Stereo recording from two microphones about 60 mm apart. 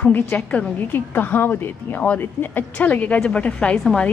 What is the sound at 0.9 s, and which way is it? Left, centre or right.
Speech, left.